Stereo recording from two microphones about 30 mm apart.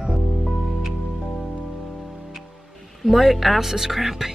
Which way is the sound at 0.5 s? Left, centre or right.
Centre.